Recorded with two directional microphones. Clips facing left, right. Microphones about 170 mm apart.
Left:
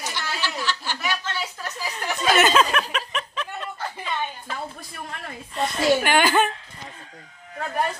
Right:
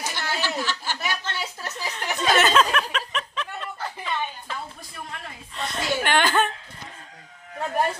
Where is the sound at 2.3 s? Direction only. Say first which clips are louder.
Left 1 dB; 5° left (ahead or behind).